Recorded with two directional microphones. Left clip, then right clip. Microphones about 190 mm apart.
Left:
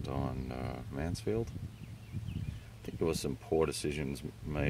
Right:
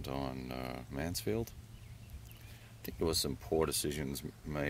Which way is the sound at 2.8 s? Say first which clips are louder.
Even; 10° right (ahead or behind).